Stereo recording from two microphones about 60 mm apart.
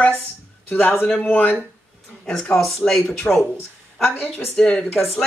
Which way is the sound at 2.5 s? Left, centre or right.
Centre.